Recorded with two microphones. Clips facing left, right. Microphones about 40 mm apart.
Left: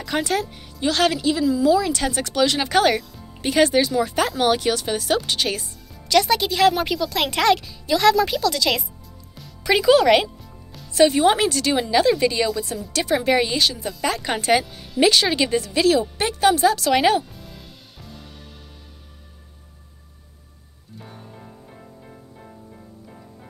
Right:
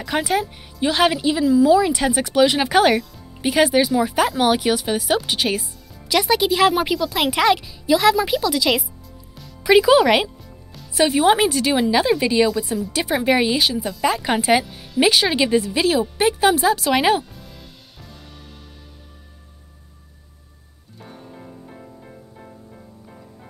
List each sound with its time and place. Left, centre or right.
0.0 s speech: centre
21.0 s music: centre